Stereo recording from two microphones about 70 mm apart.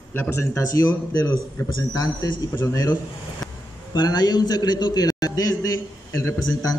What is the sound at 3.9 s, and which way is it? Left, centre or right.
A man's voice, left.